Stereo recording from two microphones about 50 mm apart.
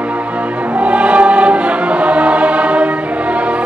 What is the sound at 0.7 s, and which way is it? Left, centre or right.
Choir, right.